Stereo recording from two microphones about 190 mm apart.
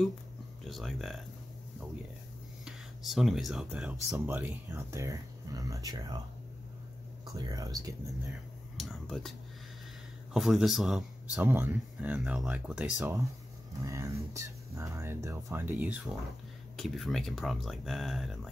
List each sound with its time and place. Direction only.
0.7 s speech: centre (ahead or behind)
2.6 s speech: centre (ahead or behind); by 6.1 s 20° right (ahead or behind)
7.3 s speech: 20° right (ahead or behind)
8.7 s a sound: centre (ahead or behind)
10.3 s speech: centre (ahead or behind)
16.7 s speech: centre (ahead or behind)